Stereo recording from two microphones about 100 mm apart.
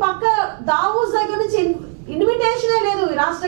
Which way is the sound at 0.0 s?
15° right (ahead or behind).